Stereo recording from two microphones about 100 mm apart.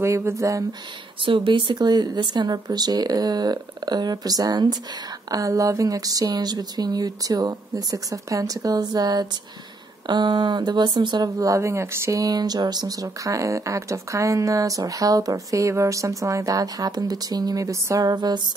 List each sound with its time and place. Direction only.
0.0 s speech: 25° right (ahead or behind)
1.2 s speech: 60° right (ahead or behind); by 18.4 s 45° right (ahead or behind)